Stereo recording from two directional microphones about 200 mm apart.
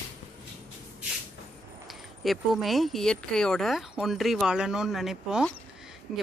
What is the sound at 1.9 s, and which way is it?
Speech, centre (ahead or behind).